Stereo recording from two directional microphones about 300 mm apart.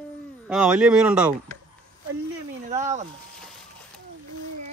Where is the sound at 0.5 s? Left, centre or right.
Centre.